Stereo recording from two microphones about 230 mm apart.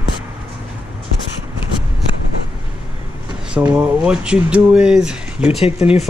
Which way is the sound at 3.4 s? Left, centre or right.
Centre.